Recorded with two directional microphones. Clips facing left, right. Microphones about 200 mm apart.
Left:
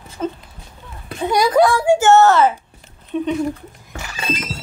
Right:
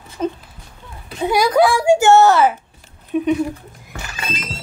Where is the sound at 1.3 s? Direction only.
Centre (ahead or behind).